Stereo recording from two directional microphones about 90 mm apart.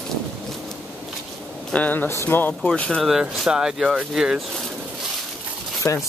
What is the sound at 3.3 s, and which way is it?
Speech, 5° right (ahead or behind).